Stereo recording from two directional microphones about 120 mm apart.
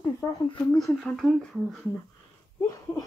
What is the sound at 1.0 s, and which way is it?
Speech, 5° left (ahead or behind).